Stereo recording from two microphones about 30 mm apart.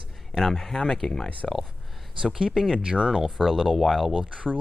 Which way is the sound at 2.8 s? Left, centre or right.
Right.